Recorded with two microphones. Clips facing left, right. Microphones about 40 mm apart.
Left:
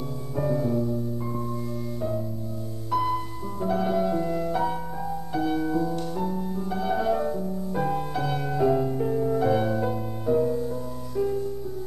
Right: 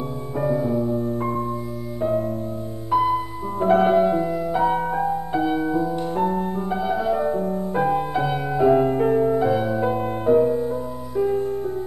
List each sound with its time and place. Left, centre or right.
0.4 s music: centre
0.9 s music: right
2.9 s music: centre
3.6 s music: right
4.2 s music: centre
4.6 s music: right
5.3 s music: right
6.1 s music: right
6.9 s music: centre
7.2 s music: right
7.8 s music: right
8.7 s music: right
9.5 s music: centre
9.8 s music: right